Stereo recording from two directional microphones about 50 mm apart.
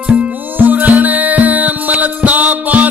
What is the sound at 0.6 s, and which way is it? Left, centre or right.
Music, right.